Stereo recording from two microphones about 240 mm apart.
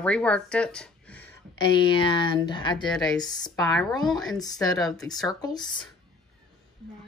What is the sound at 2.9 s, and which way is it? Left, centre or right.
Speech, centre.